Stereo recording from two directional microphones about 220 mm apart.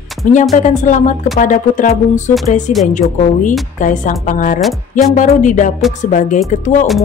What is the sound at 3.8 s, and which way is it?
Speech, 35° left (ahead or behind).